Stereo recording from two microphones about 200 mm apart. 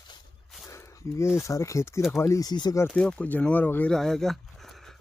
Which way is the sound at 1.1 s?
15° left (ahead or behind).